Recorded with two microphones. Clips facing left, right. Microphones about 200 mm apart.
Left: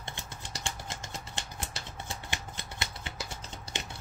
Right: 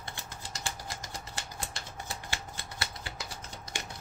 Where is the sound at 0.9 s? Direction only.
25° left (ahead or behind).